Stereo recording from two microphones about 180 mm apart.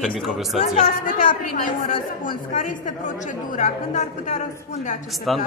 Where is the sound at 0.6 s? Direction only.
45° left (ahead or behind).